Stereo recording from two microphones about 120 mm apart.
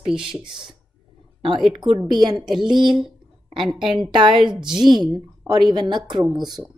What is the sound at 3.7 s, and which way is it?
Speech, 5° right (ahead or behind).